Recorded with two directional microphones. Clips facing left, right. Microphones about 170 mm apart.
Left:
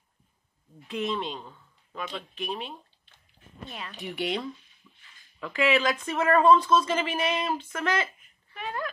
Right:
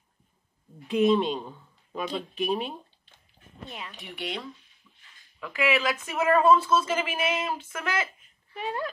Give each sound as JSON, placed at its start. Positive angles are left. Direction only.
{"t": 0.8, "sound": "a man's voice", "side_deg": -15}
{"t": 3.9, "sound": "speech", "side_deg": 0}
{"t": 5.4, "sound": "speech", "side_deg": -5}
{"t": 8.5, "sound": "speech", "side_deg": -25}